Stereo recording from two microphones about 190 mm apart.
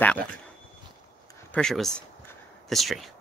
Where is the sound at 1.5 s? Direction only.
5° left (ahead or behind).